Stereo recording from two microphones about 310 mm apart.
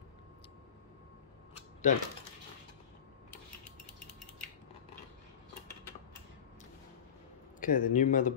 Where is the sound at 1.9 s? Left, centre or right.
Left.